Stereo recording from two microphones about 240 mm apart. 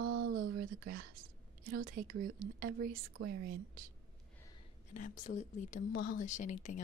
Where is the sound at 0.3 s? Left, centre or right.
Right.